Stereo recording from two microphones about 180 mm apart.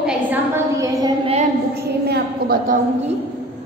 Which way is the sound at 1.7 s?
65° right (ahead or behind).